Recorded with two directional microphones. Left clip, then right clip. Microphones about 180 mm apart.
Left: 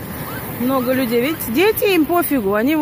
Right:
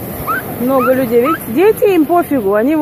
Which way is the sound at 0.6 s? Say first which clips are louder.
Right 5 dB; 50° left (ahead or behind).